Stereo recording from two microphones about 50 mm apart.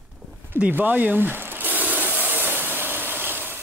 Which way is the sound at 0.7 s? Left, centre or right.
Right.